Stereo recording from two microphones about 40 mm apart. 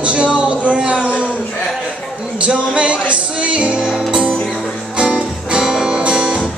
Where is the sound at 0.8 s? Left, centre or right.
Right.